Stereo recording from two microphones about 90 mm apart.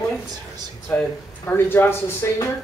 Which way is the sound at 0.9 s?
25° left (ahead or behind).